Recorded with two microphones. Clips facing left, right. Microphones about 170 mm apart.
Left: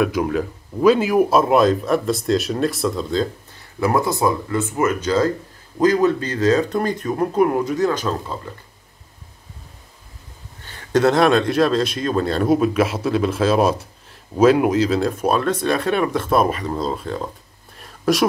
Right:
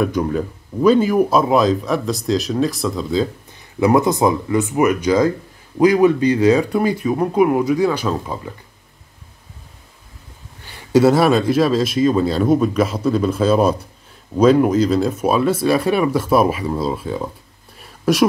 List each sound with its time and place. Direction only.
0.0 s speech: 5° left (ahead or behind)
3.8 s speech: 20° right (ahead or behind)
10.6 s speech: 10° right (ahead or behind)
17.7 s a sound: centre (ahead or behind)